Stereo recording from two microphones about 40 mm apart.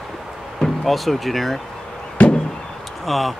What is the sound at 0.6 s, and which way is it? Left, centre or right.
Speech, centre.